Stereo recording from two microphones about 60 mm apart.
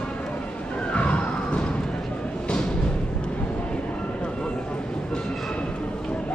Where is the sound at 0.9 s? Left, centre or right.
Left.